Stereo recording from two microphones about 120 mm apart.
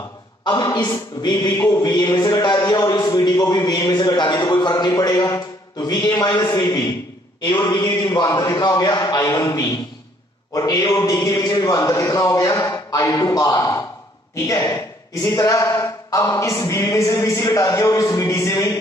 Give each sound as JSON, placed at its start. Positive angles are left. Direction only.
{"t": 0.4, "sound": "speech", "side_deg": 30}
{"t": 1.5, "sound": "a man's voice", "side_deg": 25}